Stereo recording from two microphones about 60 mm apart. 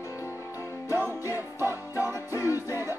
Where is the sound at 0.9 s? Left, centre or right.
Right.